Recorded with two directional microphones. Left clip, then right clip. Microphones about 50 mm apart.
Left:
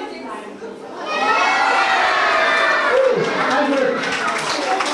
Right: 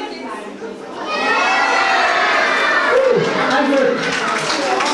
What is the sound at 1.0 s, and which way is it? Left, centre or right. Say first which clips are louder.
Crowd: even; left.